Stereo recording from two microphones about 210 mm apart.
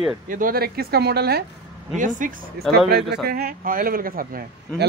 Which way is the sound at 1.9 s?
40° right (ahead or behind).